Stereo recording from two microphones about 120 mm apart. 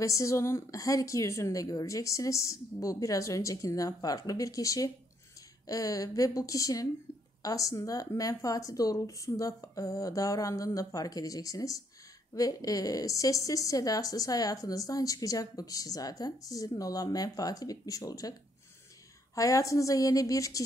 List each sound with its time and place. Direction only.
0.0 s speech: 25° left (ahead or behind)
19.3 s speech: 30° left (ahead or behind)